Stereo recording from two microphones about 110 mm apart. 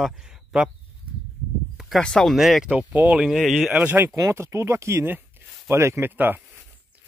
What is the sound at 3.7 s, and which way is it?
Speech, 15° right (ahead or behind).